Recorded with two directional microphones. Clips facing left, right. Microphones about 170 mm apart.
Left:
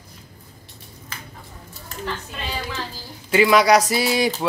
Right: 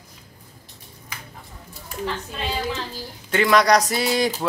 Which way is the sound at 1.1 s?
15° right (ahead or behind).